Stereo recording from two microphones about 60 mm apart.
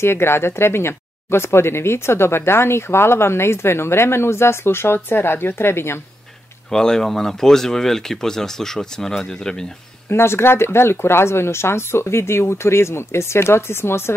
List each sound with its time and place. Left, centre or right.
0.0 s speech: left
6.7 s speech: centre
10.0 s speech: left